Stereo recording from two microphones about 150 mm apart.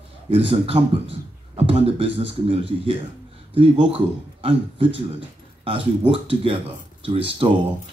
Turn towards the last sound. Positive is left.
turn(degrees=-35)  # may be behind; listen again after turning